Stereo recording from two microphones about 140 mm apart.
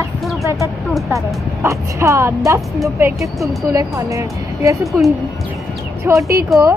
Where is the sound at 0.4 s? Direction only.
20° right (ahead or behind).